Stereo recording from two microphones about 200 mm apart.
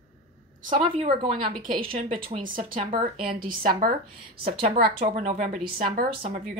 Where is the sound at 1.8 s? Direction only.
40° right (ahead or behind).